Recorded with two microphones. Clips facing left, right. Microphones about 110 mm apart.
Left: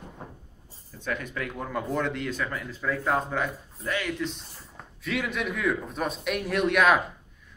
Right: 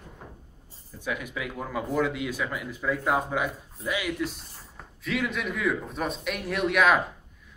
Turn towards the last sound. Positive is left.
turn(degrees=0)  # may be behind; listen again after turning